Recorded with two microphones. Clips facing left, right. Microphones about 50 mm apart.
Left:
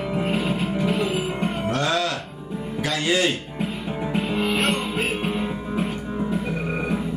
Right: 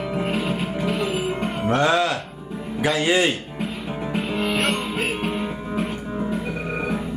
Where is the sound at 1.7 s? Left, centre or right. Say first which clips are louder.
Right 6 dB; right.